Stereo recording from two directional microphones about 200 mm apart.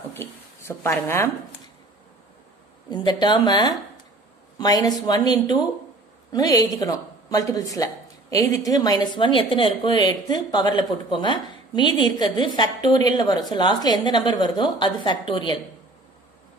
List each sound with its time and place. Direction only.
0.1 s a sound: 10° left (ahead or behind)
1.0 s speech: 15° left (ahead or behind)
2.9 s a woman's voice: 20° left (ahead or behind)